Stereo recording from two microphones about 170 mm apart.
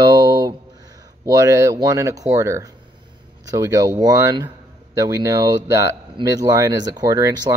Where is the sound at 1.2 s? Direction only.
20° right (ahead or behind).